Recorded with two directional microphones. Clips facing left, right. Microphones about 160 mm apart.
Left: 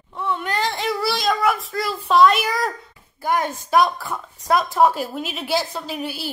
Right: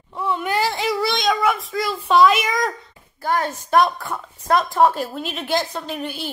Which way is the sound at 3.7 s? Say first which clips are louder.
Right 1 dB; centre (ahead or behind).